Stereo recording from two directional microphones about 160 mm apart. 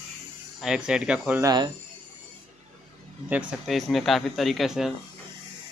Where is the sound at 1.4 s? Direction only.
25° right (ahead or behind).